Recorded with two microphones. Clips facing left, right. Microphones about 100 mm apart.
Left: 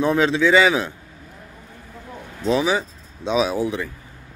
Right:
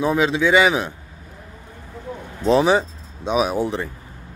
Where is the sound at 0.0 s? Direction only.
10° right (ahead or behind).